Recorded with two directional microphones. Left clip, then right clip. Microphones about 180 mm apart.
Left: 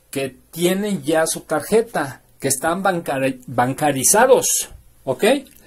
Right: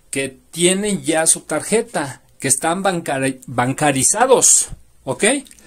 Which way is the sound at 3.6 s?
35° right (ahead or behind).